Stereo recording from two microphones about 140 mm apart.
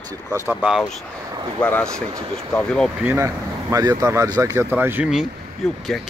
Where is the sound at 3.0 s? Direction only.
20° right (ahead or behind).